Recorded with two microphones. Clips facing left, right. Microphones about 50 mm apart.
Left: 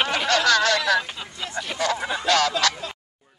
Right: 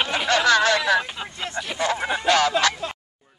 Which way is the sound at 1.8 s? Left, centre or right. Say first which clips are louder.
Right 1 dB; right.